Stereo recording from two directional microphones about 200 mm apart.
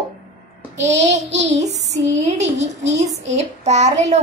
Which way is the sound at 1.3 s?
60° right (ahead or behind).